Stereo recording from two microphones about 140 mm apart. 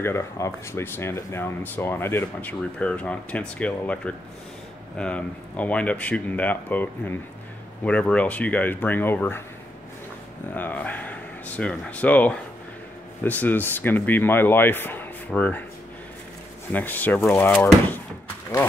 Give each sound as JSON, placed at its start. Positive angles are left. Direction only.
{"t": 0.0, "sound": "speech", "side_deg": 20}
{"t": 10.5, "sound": "speech", "side_deg": 10}
{"t": 16.7, "sound": "speech", "side_deg": 10}